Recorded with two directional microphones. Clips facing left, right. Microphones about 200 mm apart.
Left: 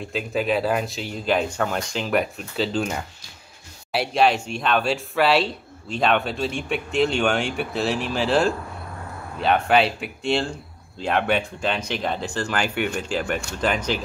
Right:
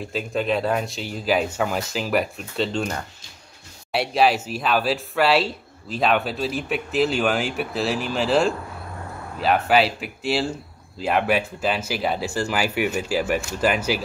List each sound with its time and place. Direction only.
0.0 s speech: centre (ahead or behind)